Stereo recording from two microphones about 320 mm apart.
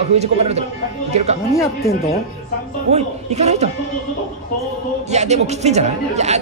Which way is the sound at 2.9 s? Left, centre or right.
Right.